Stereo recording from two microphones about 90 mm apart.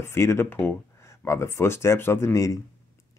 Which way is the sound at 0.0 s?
30° left (ahead or behind).